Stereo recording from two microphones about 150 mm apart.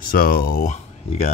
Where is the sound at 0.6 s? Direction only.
50° left (ahead or behind).